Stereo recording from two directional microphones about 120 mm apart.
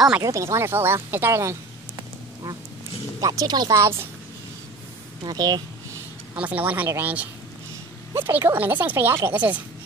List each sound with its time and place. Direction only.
0.2 s speech: 25° right (ahead or behind)
3.2 s speech: 30° right (ahead or behind)
5.2 s speech: 35° right (ahead or behind)
6.3 s speech: 10° right (ahead or behind)